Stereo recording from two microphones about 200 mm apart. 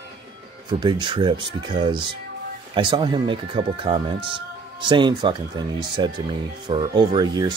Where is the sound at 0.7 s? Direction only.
20° right (ahead or behind).